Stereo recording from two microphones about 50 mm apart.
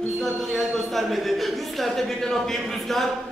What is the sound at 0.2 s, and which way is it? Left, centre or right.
Speech, centre.